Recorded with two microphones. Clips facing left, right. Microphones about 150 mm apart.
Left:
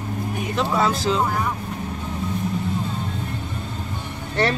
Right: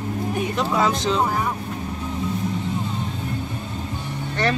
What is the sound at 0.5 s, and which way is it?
Speech, centre (ahead or behind).